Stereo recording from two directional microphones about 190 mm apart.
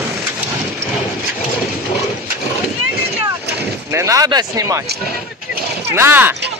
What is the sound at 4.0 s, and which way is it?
Speech, 15° right (ahead or behind).